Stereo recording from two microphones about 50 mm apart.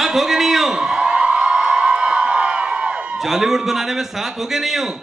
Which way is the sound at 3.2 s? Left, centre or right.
Centre.